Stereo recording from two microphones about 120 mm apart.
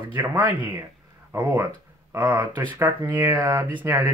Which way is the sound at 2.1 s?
20° right (ahead or behind).